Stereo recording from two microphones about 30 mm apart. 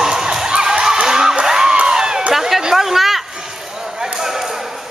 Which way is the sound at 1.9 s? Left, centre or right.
Right.